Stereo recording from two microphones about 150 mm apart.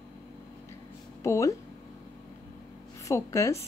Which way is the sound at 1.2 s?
20° left (ahead or behind).